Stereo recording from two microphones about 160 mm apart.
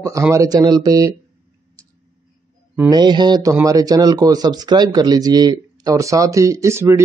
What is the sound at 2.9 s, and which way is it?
Speech, 25° right (ahead or behind).